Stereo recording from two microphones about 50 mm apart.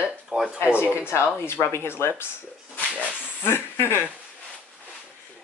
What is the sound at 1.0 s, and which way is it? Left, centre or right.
Speech, left.